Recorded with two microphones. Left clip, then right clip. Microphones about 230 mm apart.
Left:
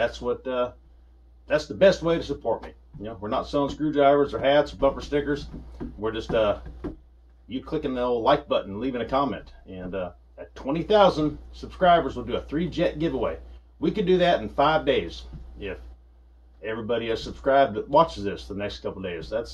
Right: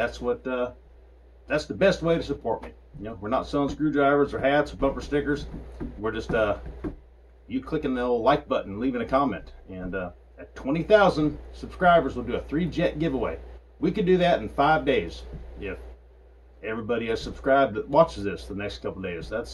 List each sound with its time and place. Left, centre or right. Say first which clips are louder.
0.0 s speech: left 1 dB; centre
16.6 s speech: left 1 dB; centre